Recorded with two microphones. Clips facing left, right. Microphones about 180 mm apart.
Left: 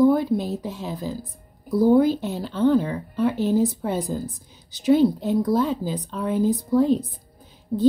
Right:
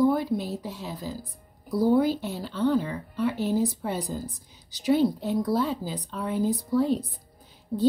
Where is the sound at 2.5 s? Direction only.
50° left (ahead or behind).